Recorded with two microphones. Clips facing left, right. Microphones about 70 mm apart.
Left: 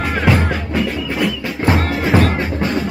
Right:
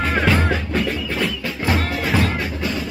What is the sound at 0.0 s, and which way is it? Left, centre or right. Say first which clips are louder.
Music: left 2 dB; centre.